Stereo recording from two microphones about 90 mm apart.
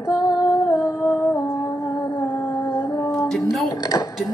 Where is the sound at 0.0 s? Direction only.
45° left (ahead or behind).